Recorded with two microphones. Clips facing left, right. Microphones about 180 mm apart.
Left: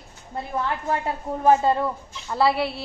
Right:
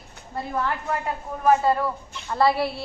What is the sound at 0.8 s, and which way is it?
Speech, 30° left (ahead or behind).